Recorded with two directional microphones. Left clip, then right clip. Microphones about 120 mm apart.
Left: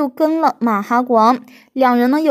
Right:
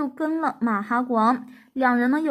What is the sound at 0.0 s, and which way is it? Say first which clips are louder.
Speech: left 10 dB; 60° left (ahead or behind).